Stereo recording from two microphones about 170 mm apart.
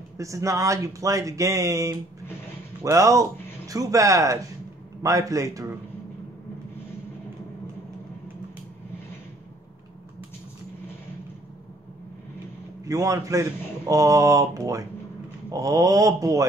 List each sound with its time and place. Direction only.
0.2 s a man's voice: 20° right (ahead or behind)
12.8 s a man's voice: 20° right (ahead or behind)